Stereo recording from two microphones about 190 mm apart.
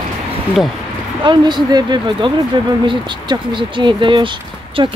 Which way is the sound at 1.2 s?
25° right (ahead or behind).